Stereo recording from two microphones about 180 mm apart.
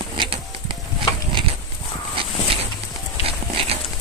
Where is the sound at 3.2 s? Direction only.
35° right (ahead or behind).